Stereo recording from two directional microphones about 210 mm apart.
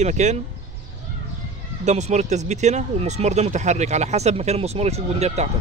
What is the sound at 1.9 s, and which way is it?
Speech, 35° right (ahead or behind).